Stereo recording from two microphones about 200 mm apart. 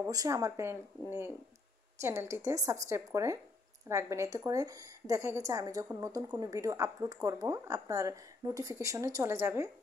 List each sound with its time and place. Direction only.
0.0 s a woman's voice: 15° right (ahead or behind)